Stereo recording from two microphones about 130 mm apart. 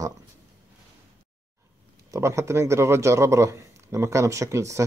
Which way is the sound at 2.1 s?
20° right (ahead or behind).